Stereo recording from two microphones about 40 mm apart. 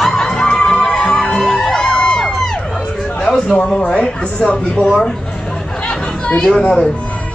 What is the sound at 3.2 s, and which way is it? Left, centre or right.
A man's voice, centre.